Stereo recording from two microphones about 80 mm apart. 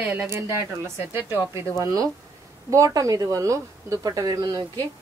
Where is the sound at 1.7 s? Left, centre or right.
Right.